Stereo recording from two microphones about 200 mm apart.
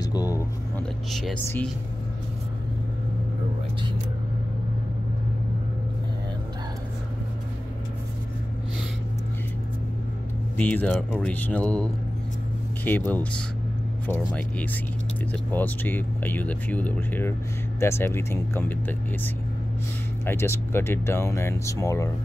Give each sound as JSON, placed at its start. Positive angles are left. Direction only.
{"t": 0.0, "sound": "vehicle", "side_deg": 20}
{"t": 1.1, "sound": "speech", "side_deg": 5}
{"t": 10.6, "sound": "speech", "side_deg": 5}